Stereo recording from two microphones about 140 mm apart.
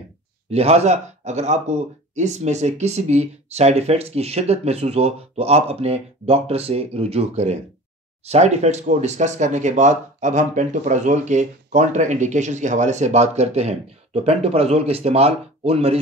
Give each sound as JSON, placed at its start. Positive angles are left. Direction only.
{"t": 0.5, "sound": "a man's voice", "side_deg": -50}